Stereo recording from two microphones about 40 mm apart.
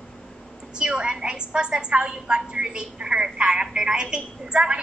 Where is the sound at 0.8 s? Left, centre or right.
Right.